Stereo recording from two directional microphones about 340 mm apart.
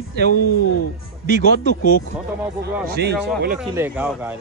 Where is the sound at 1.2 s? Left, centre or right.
Right.